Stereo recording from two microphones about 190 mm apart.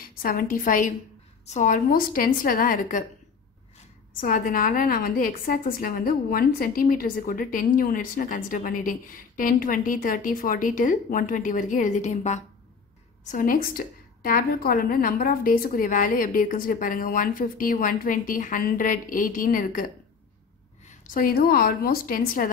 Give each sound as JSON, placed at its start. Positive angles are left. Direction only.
{"t": 0.2, "sound": "a woman's voice", "side_deg": 45}
{"t": 4.2, "sound": "a woman's voice", "side_deg": 45}